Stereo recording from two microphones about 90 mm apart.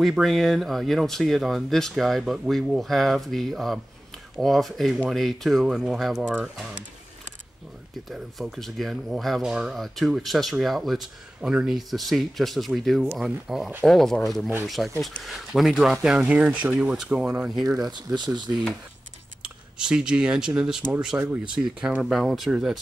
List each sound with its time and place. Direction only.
0.0 s speech: centre (ahead or behind)
6.2 s speech: 20° right (ahead or behind)
8.1 s speech: centre (ahead or behind); by 16.8 s 20° right (ahead or behind)
16.8 s speech: 5° right (ahead or behind)
17.8 s speech: 50° right (ahead or behind)
19.4 s speech: 10° right (ahead or behind)
21.1 s speech: 20° right (ahead or behind)
21.5 s speech: 10° right (ahead or behind)